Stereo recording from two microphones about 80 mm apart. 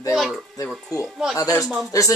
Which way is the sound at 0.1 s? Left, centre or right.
Centre.